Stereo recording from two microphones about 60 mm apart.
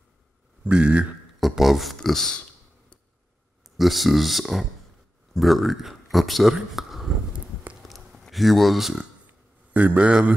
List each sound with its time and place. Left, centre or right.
0.7 s speech: centre
1.6 s a sound: centre
2.0 s speech: centre
3.6 s speech: centre
7.8 s a sound: centre
9.8 s a man's voice: right